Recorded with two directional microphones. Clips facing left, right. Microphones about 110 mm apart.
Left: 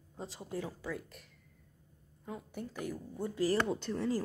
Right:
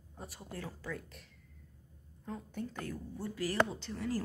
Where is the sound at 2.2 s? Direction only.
5° left (ahead or behind).